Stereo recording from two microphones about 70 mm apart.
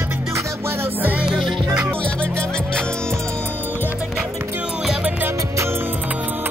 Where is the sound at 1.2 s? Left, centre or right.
Centre.